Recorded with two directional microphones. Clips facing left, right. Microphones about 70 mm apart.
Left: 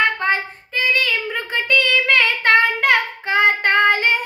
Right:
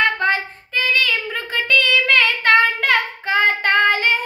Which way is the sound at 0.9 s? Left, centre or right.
Left.